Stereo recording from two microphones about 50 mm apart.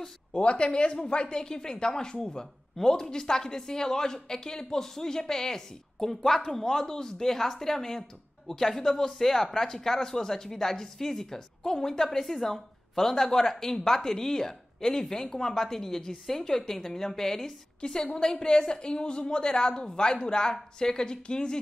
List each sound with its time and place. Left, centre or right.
0.0 s a woman's voice: centre